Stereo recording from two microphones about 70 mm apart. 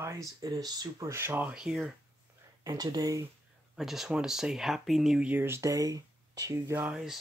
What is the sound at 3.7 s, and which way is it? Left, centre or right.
Speech, centre.